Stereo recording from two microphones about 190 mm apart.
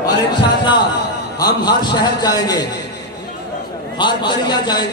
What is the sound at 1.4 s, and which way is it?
A man's voice, 20° left (ahead or behind).